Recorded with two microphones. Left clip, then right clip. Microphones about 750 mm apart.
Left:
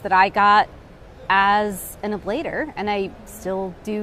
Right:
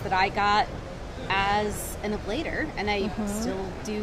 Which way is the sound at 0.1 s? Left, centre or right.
Left.